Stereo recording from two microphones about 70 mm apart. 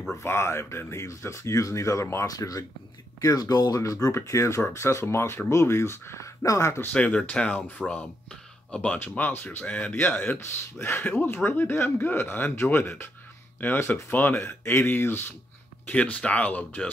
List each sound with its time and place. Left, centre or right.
0.1 s speech: left
2.2 s speech: left
6.4 s speech: left
6.9 s speech: centre
15.9 s speech: centre